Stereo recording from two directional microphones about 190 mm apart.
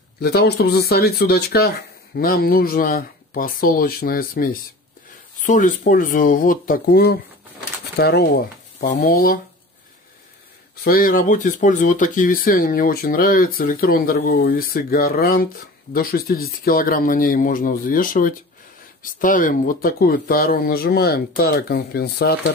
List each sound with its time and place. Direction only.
0.2 s speech: 55° left (ahead or behind)
10.8 s speech: 50° left (ahead or behind)